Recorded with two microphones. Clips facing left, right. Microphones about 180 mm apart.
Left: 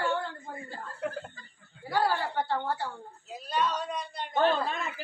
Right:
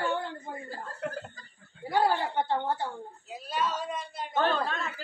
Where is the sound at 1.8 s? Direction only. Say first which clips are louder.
Right 2 dB; 20° right (ahead or behind).